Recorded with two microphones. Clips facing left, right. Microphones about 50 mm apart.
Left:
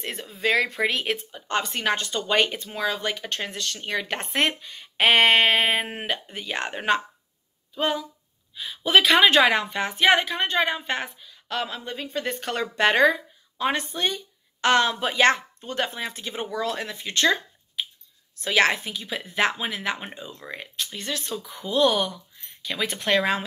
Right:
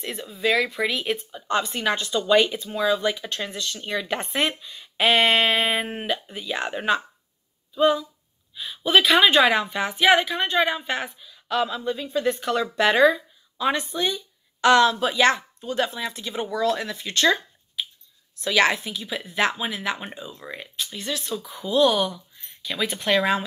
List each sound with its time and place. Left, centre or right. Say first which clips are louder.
0.0 s speech: right 1 dB; left
8.5 s a woman's voice: even; left
20.5 s a woman's voice: even; left